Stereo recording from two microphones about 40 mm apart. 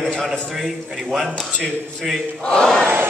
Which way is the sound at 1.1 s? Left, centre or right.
Centre.